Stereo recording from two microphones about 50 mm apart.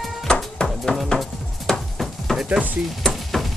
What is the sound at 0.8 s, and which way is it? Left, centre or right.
Music, centre.